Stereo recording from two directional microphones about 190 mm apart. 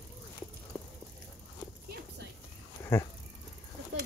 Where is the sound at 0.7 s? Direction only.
Centre (ahead or behind).